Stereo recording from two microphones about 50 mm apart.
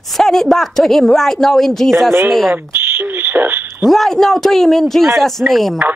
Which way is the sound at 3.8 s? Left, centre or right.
Centre.